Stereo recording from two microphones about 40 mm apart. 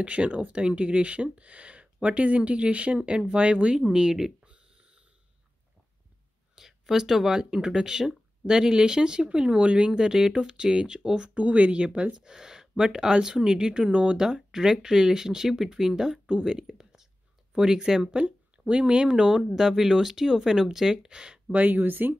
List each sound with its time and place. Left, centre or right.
0.0 s speech: right
6.5 s speech: centre
11.3 s speech: right; by 16.3 s centre
16.7 s whispering: centre
17.6 s speech: centre
18.7 s speech: right
21.5 s speech: right